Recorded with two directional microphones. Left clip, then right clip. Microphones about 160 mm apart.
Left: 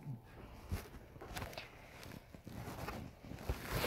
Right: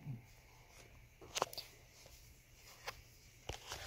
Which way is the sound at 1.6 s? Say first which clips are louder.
Left 1 dB; 20° right (ahead or behind).